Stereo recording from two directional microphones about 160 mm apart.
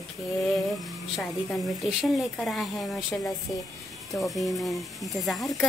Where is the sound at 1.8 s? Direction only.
Centre (ahead or behind).